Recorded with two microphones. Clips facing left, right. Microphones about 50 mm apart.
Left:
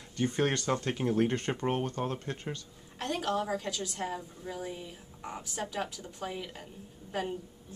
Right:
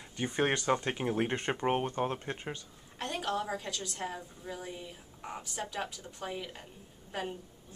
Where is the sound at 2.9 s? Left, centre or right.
Centre.